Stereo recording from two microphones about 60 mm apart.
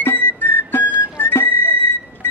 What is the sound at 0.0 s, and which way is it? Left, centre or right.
Music, left.